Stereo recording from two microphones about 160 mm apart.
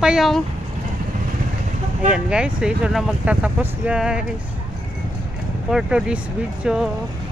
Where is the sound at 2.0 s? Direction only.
5° right (ahead or behind).